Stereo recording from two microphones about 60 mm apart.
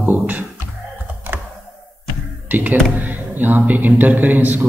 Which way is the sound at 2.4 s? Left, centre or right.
Right.